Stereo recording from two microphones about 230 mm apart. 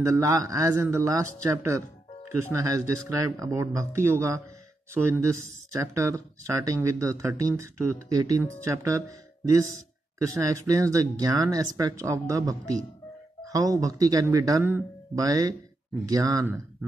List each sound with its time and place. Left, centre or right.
0.0 s speech: centre
10.4 s speech: centre